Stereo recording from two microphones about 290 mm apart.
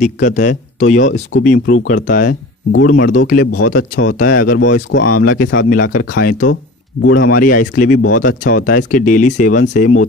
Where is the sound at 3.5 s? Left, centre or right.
Left.